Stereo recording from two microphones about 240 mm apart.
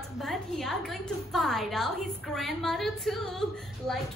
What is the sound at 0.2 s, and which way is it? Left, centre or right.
A woman's voice, centre.